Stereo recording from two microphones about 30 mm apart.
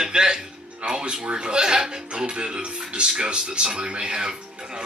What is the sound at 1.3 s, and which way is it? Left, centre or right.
A man's voice, right.